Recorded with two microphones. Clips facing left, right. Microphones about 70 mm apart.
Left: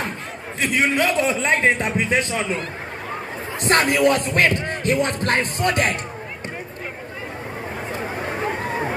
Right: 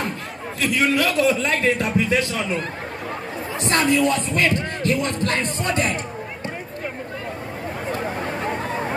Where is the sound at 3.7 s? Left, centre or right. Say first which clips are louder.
Left 2 dB; left.